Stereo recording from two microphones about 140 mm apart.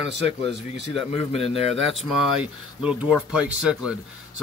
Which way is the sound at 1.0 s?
45° left (ahead or behind).